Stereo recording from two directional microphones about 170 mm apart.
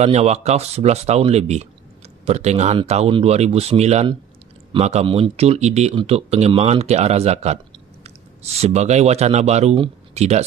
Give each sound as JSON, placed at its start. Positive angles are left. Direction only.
{"t": 0.0, "sound": "speech", "side_deg": -40}